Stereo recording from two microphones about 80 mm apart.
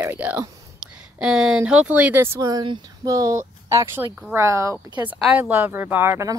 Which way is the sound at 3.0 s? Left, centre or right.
Right.